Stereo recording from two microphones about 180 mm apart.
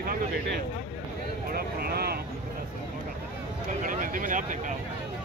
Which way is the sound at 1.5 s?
60° right (ahead or behind).